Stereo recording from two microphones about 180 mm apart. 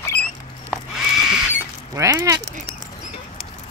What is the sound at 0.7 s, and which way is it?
Horse, 5° right (ahead or behind).